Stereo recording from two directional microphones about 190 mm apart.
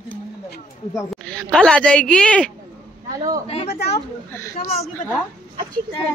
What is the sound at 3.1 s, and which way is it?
Speech, 20° right (ahead or behind).